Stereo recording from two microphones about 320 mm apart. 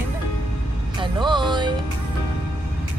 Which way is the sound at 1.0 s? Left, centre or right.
Centre.